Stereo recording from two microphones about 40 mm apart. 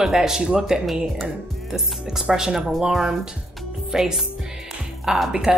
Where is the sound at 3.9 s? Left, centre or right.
Centre.